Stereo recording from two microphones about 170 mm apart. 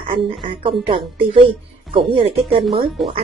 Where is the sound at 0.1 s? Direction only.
30° right (ahead or behind).